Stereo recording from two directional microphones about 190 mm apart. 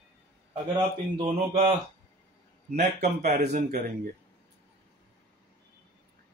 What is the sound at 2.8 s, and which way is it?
Speech, 40° right (ahead or behind).